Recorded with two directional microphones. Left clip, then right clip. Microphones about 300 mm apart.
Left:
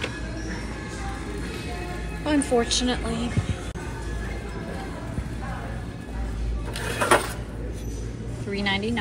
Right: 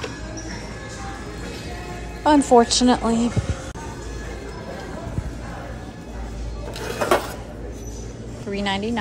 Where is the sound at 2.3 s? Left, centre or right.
Centre.